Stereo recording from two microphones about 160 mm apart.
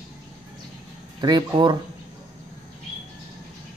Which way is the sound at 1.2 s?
25° right (ahead or behind).